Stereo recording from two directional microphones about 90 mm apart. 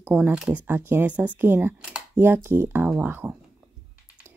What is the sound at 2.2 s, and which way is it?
Speech, 25° right (ahead or behind).